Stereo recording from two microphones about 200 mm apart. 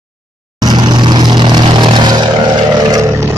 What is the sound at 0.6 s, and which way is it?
Vehicle, 20° right (ahead or behind).